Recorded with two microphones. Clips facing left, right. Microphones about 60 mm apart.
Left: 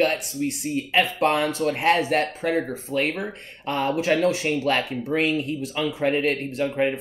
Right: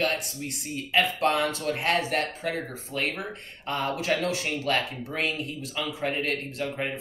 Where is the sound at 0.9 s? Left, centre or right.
Left.